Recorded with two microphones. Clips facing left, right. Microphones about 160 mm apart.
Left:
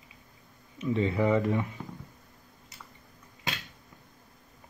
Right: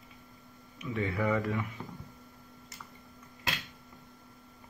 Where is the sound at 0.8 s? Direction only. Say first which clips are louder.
Left 5 dB; 30° left (ahead or behind).